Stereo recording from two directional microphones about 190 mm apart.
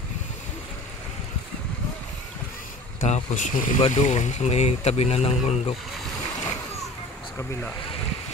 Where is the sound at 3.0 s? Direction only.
40° left (ahead or behind).